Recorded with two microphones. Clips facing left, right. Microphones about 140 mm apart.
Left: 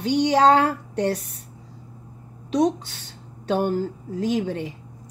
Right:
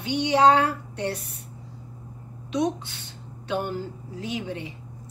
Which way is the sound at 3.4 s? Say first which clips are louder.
Left 6 dB; 40° left (ahead or behind).